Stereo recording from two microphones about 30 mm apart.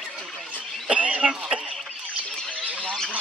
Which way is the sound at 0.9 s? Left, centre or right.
Right.